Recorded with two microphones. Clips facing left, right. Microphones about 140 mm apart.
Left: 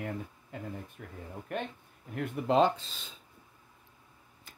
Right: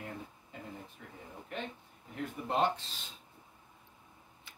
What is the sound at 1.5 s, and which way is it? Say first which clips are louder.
Speech: left 5 dB; 60° left (ahead or behind).